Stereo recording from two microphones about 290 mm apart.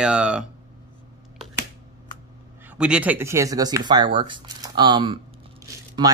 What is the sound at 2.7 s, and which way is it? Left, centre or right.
Speech, centre.